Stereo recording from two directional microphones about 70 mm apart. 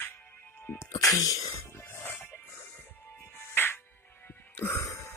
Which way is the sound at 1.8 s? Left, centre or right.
Left.